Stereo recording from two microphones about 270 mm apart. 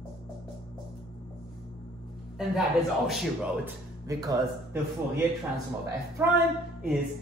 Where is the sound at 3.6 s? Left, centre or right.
Centre.